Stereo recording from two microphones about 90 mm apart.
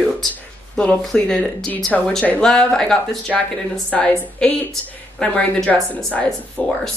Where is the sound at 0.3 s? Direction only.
10° left (ahead or behind).